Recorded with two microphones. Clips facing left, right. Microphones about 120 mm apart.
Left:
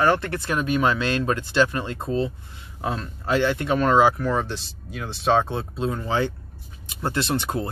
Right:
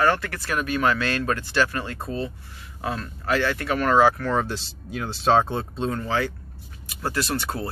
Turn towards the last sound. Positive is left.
turn(degrees=20)  # may be behind; listen again after turning